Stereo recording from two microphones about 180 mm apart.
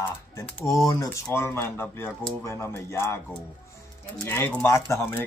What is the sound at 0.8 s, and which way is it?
Speech, 20° left (ahead or behind).